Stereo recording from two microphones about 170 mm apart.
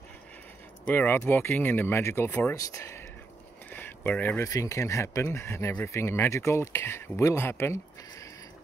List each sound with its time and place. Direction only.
0.8 s speech: 10° left (ahead or behind)